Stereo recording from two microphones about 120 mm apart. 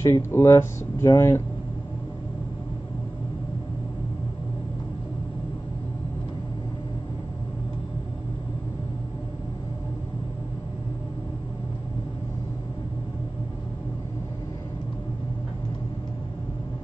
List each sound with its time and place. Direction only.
0.0 s speech: 20° left (ahead or behind)